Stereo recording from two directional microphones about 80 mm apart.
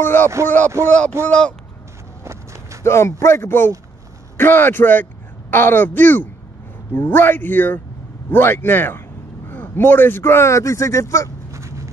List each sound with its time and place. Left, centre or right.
0.0 s speech: left
0.8 s speech: centre
2.2 s walk: right
2.8 s a man's voice: left
11.5 s a sound: right